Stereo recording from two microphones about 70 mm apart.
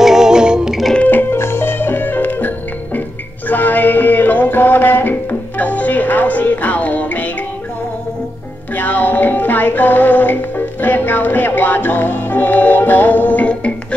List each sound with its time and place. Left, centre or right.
0.0 s music: centre
0.9 s music: left
8.7 s music: left